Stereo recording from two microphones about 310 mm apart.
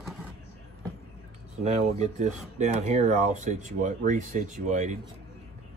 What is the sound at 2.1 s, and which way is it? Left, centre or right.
Speech, right.